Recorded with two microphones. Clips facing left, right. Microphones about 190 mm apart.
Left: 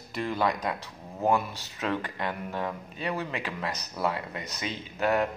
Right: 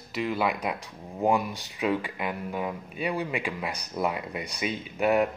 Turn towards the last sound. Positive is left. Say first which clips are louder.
# right 3 dB
turn(degrees=-15)  # may be behind; listen again after turning